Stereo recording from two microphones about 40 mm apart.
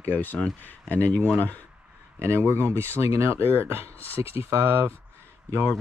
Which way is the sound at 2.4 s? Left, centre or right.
Right.